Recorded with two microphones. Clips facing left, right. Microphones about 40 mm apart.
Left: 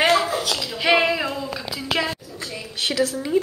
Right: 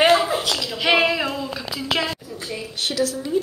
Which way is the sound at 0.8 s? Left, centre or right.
Centre.